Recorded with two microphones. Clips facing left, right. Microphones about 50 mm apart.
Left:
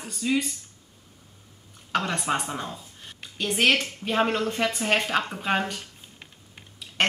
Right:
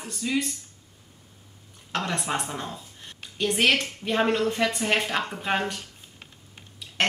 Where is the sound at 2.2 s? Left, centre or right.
Centre.